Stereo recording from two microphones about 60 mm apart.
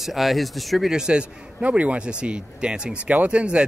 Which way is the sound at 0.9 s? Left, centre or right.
Centre.